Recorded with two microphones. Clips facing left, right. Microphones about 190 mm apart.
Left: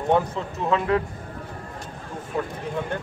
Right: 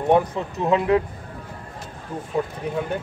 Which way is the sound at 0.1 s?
15° right (ahead or behind).